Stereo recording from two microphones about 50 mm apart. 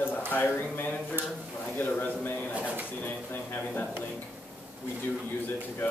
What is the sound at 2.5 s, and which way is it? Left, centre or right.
Speech, right.